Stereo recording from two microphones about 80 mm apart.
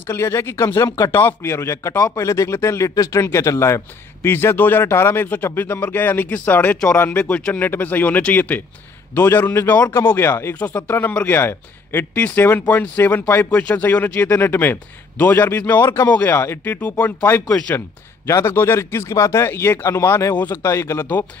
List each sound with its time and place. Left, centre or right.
0.0 s speech: left
10.5 s speech: centre
14.3 s speech: left
17.5 s speech: centre
17.7 s speech: left
20.3 s speech: left
20.6 s speech: left